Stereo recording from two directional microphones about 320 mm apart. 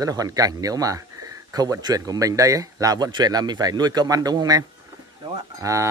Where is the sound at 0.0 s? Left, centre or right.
Centre.